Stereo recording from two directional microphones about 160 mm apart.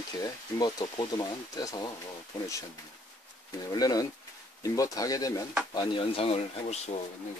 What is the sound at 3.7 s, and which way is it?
Speech, 25° left (ahead or behind).